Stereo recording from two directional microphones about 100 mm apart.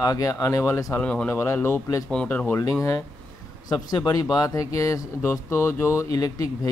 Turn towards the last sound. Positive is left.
turn(degrees=35)  # may be behind; listen again after turning